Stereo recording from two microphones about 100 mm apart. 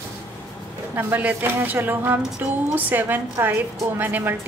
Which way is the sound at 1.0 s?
20° right (ahead or behind).